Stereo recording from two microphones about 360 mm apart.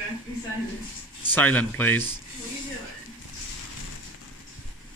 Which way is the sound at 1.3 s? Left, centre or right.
Centre.